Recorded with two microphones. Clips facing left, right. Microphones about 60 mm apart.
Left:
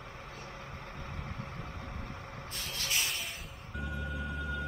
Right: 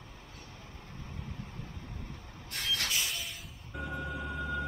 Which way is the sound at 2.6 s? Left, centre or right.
Right.